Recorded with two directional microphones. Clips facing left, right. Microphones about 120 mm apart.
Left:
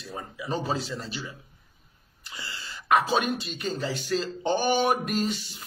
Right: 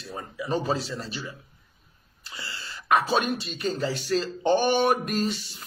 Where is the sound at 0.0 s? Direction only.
30° right (ahead or behind).